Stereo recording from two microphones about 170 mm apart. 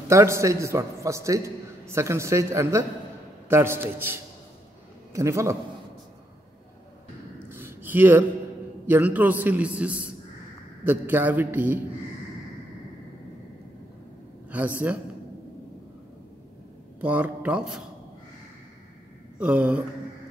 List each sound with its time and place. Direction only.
0.1 s a man's voice: 15° right (ahead or behind)
7.4 s a sound: 15° right (ahead or behind)
8.8 s a man's voice: 10° right (ahead or behind)
14.8 s a man's voice: 10° right (ahead or behind)
17.0 s a man's voice: 10° right (ahead or behind)
19.3 s a man's voice: 5° right (ahead or behind)